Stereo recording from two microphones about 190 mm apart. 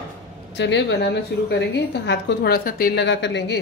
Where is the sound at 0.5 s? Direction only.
65° left (ahead or behind).